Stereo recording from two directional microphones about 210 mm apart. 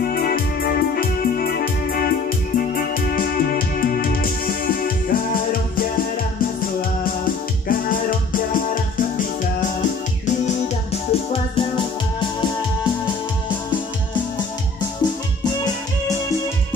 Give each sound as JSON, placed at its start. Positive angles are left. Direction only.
{"t": 0.0, "sound": "music", "side_deg": 45}
{"t": 7.6, "sound": "music", "side_deg": 40}